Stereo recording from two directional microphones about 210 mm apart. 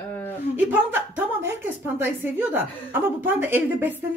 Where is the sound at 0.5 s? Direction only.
10° right (ahead or behind).